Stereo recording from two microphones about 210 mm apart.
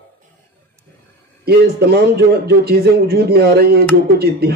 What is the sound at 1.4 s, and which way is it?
A man's voice, 50° right (ahead or behind).